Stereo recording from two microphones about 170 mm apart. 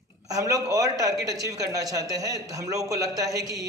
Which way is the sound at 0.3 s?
20° right (ahead or behind).